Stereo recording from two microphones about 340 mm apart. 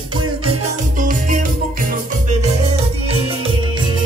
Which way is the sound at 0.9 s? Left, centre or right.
Right.